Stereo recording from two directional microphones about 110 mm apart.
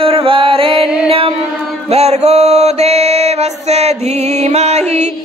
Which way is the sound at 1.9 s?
70° right (ahead or behind).